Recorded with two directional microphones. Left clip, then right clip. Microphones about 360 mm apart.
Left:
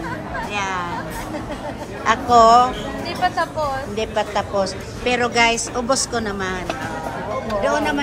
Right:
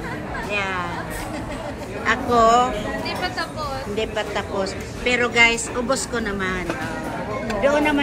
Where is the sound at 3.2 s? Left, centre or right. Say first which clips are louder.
Left 6 dB; left.